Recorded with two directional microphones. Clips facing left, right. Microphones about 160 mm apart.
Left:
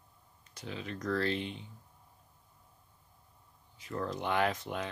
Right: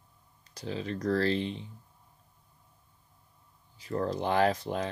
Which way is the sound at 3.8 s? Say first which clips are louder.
Right 5 dB; 35° right (ahead or behind).